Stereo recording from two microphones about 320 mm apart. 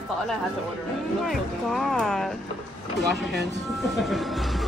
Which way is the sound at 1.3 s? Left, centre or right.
Centre.